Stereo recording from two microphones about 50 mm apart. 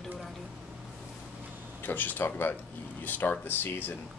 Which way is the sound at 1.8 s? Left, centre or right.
Left.